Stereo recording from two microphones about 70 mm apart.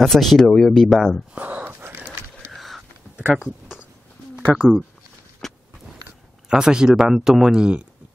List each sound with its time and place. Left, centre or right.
0.0 s speech: centre
1.3 s wheeze: right
2.5 s a sound: centre
4.6 s speech: centre
5.4 s walk: centre
6.5 s speech: centre